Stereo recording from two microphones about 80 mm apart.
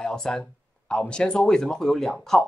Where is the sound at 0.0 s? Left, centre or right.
Centre.